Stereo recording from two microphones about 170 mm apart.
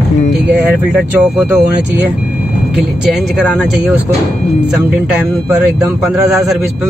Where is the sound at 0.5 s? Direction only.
5° right (ahead or behind).